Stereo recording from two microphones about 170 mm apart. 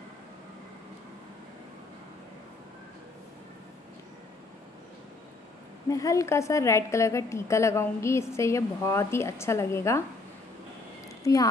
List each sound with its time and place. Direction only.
5.9 s a woman's voice: 20° left (ahead or behind)
11.3 s a woman's voice: 20° left (ahead or behind)